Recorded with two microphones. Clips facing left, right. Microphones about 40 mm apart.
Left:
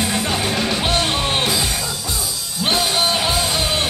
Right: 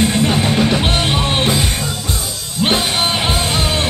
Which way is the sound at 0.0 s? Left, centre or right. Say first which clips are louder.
Right 5 dB; right.